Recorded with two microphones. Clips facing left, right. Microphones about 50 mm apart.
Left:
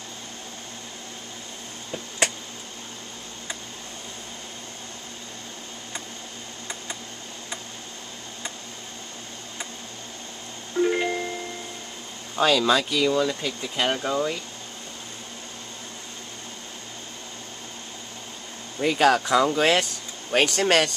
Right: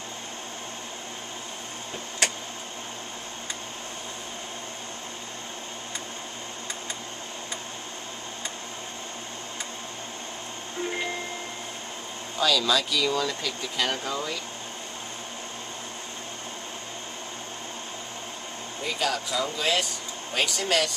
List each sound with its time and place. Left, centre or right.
10.8 s music: centre
12.4 s speech: left
13.1 s speech: centre
18.8 s speech: left